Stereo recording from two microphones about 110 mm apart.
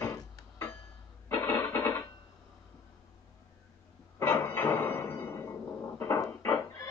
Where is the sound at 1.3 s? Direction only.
25° left (ahead or behind).